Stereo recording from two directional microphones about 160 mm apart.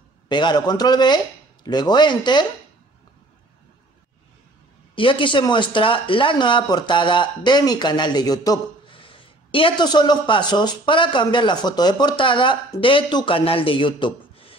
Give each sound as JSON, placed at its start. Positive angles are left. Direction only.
{"t": 0.3, "sound": "speech", "side_deg": 25}
{"t": 4.9, "sound": "speech", "side_deg": 30}